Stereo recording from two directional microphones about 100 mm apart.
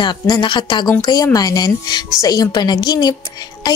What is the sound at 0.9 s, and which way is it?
A woman's voice, 35° left (ahead or behind).